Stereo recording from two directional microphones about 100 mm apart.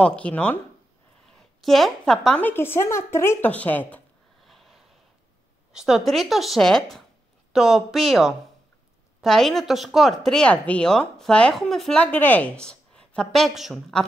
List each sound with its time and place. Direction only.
0.0 s a woman's voice: 10° left (ahead or behind)
1.6 s speech: centre (ahead or behind)
2.4 s a woman's voice: 25° left (ahead or behind)
4.5 s a sound: centre (ahead or behind)
5.7 s speech: 5° right (ahead or behind)
12.0 s a woman's voice: 15° left (ahead or behind)